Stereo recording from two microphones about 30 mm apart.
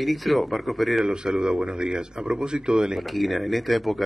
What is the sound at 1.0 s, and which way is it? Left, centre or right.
Speech, right.